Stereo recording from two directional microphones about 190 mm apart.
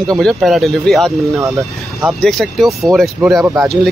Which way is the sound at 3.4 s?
15° right (ahead or behind).